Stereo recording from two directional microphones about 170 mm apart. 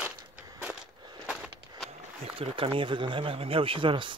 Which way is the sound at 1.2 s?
Centre (ahead or behind).